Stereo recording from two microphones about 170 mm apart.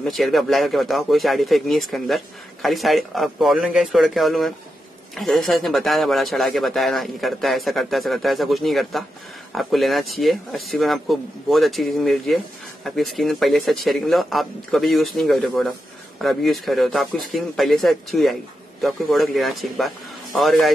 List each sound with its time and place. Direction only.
0.0 s speech: centre (ahead or behind)